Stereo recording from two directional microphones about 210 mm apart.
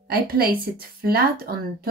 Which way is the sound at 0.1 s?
45° right (ahead or behind).